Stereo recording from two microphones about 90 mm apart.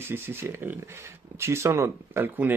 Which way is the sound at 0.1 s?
25° right (ahead or behind).